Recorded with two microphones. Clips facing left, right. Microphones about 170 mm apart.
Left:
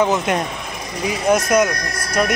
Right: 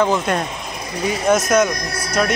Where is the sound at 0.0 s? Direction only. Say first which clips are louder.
Even; 15° left (ahead or behind).